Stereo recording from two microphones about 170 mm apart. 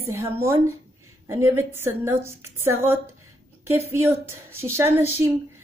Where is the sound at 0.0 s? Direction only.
15° right (ahead or behind).